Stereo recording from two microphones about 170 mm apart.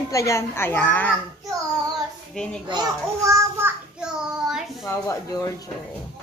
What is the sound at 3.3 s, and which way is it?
Child singing, 15° right (ahead or behind).